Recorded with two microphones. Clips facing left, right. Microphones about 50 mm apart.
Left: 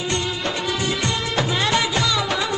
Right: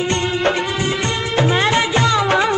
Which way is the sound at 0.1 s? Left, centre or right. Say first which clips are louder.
Right 6 dB; right.